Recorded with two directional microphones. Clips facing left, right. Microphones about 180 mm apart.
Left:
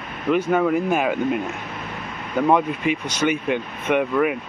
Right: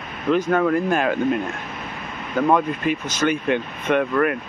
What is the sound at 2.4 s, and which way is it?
Speech, 10° left (ahead or behind).